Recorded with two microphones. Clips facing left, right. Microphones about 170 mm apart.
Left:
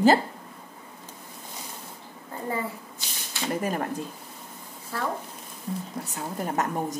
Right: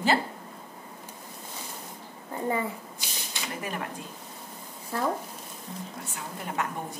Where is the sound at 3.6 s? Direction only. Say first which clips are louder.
Left 6 dB; 40° left (ahead or behind).